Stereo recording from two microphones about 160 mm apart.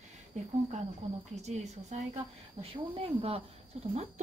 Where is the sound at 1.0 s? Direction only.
40° right (ahead or behind).